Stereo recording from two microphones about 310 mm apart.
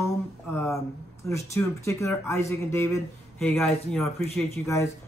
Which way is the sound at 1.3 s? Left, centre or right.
Centre.